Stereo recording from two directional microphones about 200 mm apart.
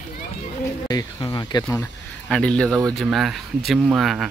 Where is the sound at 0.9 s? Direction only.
20° left (ahead or behind).